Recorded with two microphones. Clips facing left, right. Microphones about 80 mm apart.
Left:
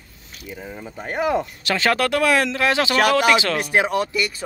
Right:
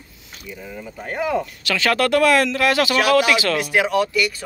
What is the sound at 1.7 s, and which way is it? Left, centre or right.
Speech, left.